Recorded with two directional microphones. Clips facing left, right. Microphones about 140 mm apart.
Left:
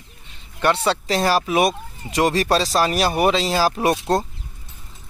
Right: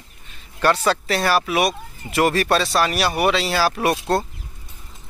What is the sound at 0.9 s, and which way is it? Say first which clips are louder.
Speech: even; 30° left (ahead or behind).